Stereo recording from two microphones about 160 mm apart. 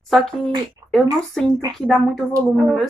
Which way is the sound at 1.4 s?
5° left (ahead or behind).